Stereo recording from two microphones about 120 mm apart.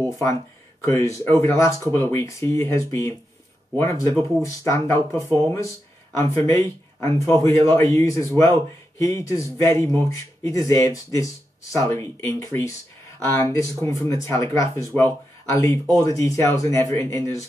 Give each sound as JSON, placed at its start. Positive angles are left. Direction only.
{"t": 0.2, "sound": "a man's voice", "side_deg": 25}